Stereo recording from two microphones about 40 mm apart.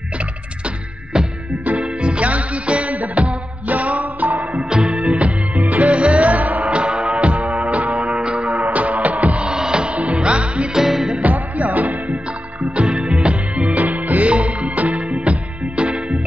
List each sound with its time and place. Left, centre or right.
1.1 s music: right
4.6 s music: centre
5.7 s music: right
8.7 s music: right
9.5 s music: centre
9.9 s music: right
10.7 s music: centre
11.3 s music: right
12.7 s music: right
13.7 s music: right